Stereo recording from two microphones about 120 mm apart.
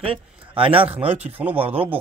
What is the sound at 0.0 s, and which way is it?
Speech, 50° right (ahead or behind).